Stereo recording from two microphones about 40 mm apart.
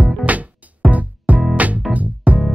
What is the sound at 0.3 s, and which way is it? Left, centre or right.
Music, right.